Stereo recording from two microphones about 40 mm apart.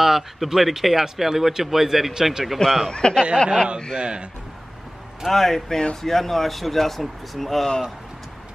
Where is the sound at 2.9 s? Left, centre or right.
Left.